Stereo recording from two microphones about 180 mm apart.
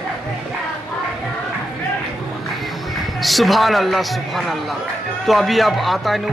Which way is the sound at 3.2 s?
Centre (ahead or behind).